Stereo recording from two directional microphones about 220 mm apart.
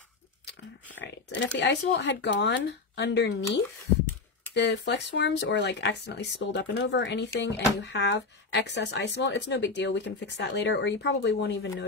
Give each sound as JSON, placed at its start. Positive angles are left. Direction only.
{"t": 1.0, "sound": "speech", "side_deg": 55}